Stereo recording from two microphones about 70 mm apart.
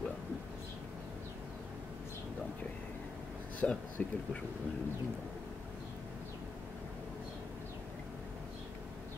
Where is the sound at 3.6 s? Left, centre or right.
Centre.